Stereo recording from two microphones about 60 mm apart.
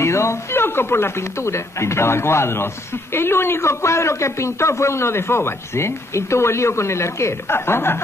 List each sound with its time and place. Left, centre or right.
0.0 s speech: left
7.5 s a woman's voice: left